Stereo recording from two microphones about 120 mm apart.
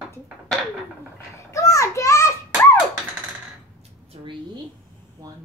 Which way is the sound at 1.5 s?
25° left (ahead or behind).